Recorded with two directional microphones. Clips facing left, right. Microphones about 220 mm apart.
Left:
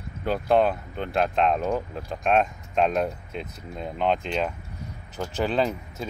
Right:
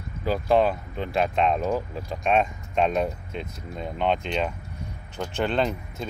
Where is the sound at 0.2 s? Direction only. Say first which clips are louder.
Even; centre (ahead or behind).